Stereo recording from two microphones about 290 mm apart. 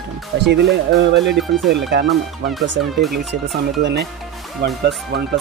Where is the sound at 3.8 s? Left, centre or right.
Right.